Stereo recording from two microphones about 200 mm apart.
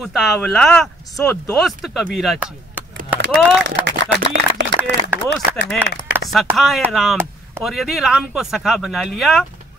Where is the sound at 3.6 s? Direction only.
65° right (ahead or behind).